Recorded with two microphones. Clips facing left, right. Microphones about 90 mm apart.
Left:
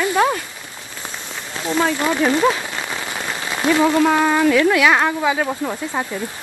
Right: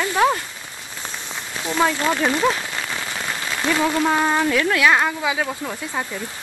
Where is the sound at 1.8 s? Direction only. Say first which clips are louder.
Left 2 dB; 15° left (ahead or behind).